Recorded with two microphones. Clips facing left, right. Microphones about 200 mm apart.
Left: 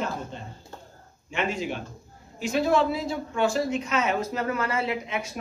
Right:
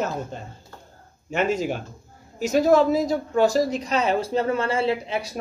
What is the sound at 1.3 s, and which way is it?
Speech, 40° right (ahead or behind).